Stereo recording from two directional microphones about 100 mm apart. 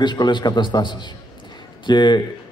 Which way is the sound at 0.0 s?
50° left (ahead or behind).